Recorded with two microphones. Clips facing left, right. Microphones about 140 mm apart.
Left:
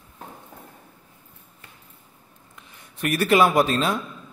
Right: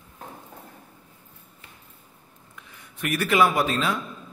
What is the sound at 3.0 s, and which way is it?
Speech, 35° left (ahead or behind).